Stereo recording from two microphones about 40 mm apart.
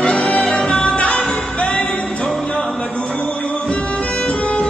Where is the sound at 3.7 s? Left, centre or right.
Left.